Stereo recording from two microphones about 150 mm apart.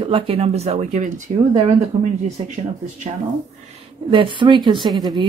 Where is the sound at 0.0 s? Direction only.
40° right (ahead or behind); by 1.2 s 55° right (ahead or behind).